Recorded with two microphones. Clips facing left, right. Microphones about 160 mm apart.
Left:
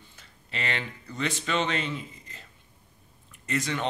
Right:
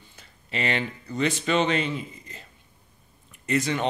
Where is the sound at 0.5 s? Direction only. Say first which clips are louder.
Right 6 dB; 10° right (ahead or behind).